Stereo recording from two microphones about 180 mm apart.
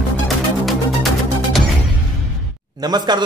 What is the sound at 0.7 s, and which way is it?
Music, centre (ahead or behind).